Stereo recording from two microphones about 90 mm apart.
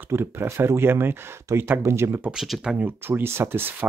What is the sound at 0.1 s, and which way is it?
Speech, 25° right (ahead or behind).